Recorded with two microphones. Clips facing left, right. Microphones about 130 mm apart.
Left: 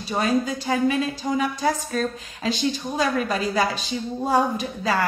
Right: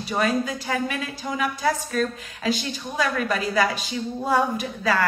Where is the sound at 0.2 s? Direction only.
25° left (ahead or behind).